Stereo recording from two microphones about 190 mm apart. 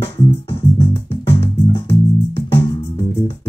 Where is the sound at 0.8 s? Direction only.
30° left (ahead or behind).